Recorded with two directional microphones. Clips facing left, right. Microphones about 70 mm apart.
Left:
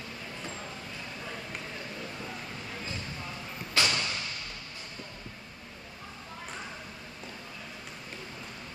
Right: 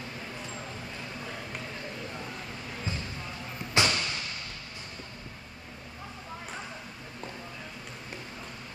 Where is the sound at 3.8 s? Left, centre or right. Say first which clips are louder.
Right 2 dB; right.